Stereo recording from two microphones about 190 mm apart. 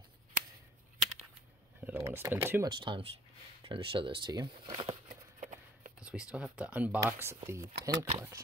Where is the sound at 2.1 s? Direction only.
10° right (ahead or behind).